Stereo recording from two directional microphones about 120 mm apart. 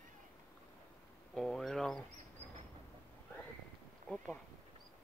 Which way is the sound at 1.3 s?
Centre (ahead or behind).